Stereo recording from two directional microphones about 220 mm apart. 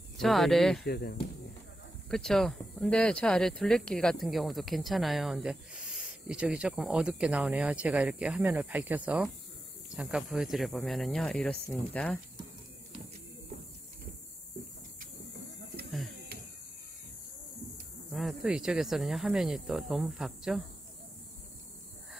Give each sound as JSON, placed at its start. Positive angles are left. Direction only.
{"t": 0.2, "sound": "speech", "side_deg": 0}
{"t": 0.8, "sound": "speech", "side_deg": 45}
{"t": 2.0, "sound": "speech", "side_deg": 0}
{"t": 16.1, "sound": "a sound", "side_deg": -45}
{"t": 18.1, "sound": "speech", "side_deg": 0}